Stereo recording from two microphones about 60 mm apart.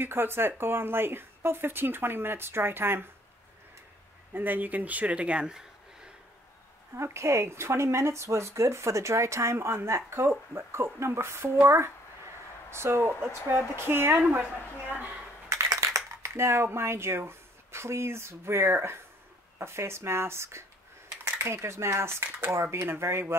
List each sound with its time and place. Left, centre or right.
0.0 s speech: right
4.3 s speech: right; by 5.6 s centre
7.0 s speech: right
15.5 s a sound: right
16.2 s speech: right